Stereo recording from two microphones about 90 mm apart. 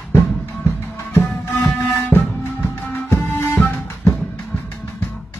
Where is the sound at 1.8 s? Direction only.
25° left (ahead or behind).